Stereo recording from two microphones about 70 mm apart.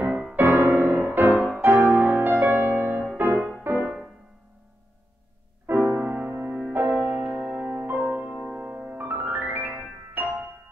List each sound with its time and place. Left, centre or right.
0.4 s music: right
3.3 s music: centre
3.6 s music: right
5.7 s music: right
8.9 s piano: right
10.2 s music: right